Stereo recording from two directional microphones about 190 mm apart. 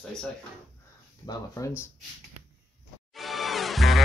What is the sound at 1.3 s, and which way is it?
Speech, 15° left (ahead or behind).